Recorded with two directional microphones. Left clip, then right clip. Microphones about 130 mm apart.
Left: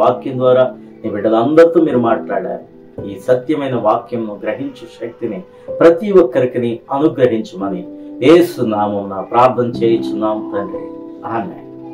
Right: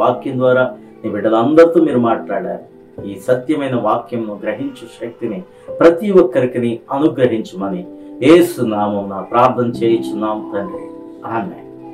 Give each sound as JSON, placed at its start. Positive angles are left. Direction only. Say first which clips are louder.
{"t": 0.0, "sound": "speech", "louder": "left 1 dB", "side_deg": 5}
{"t": 5.8, "sound": "speech", "louder": "left 1 dB", "side_deg": 5}